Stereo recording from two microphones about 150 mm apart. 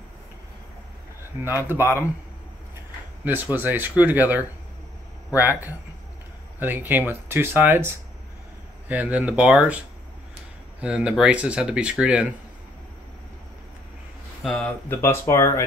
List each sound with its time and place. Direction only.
1.4 s speech: 15° right (ahead or behind)
3.5 s speech: 10° right (ahead or behind)
14.4 s speech: centre (ahead or behind)
14.9 s speech: 15° left (ahead or behind)